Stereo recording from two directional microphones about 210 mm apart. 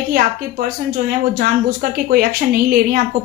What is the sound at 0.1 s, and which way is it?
A woman's voice, 45° right (ahead or behind).